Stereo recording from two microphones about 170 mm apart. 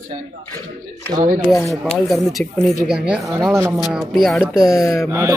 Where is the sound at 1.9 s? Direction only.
Centre (ahead or behind).